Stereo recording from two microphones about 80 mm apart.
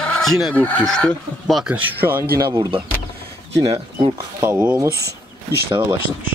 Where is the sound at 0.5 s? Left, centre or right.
Centre.